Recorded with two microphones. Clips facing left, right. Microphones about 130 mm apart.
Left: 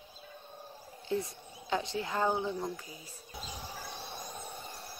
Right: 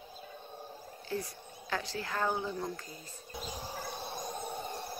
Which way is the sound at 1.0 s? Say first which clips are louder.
Left 4 dB; 20° left (ahead or behind).